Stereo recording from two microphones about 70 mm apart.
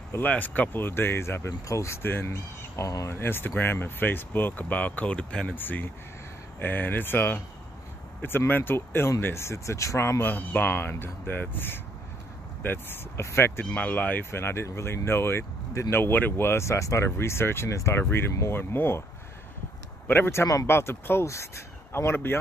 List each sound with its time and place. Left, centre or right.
0.2 s speech: left
2.3 s speech: left
3.1 s speech: left; by 5.5 s centre
5.5 s speech: left
13.7 s speech: left
14.3 s speech: left
20.1 s speech: left